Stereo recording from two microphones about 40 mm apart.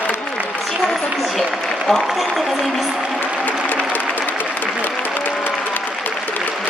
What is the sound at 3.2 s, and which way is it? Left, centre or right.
Music, left.